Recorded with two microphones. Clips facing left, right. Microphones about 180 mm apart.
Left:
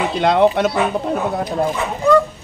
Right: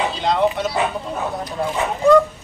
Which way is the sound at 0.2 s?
60° left (ahead or behind).